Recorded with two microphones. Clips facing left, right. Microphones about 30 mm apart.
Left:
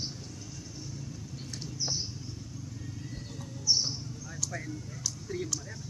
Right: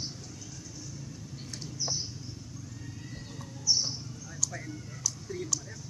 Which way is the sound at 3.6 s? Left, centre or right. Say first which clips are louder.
Even; centre.